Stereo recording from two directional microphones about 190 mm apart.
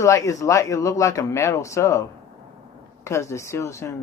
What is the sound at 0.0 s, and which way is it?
Speech, 15° left (ahead or behind).